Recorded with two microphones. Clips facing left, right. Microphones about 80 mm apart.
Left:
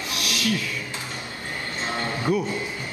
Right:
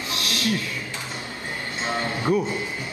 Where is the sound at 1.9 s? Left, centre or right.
Right.